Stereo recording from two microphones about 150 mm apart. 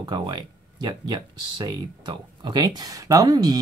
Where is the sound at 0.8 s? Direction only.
25° right (ahead or behind).